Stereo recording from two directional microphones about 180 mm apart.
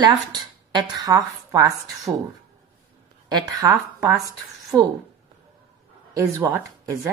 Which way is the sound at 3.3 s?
20° right (ahead or behind).